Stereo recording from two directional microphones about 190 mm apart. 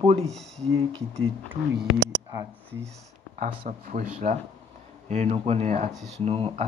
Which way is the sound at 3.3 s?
45° right (ahead or behind).